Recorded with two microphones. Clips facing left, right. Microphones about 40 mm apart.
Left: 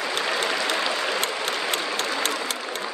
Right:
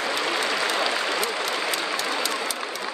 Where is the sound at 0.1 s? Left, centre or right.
Left.